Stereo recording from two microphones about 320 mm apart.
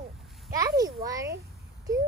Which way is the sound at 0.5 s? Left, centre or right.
Centre.